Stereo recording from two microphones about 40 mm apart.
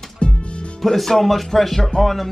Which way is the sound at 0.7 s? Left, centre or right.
Centre.